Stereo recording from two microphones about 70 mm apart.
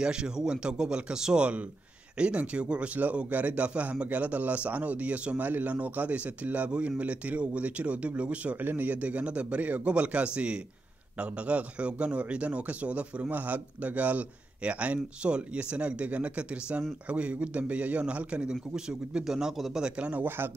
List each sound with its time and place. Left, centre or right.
0.0 s a man's voice: centre; by 20.5 s right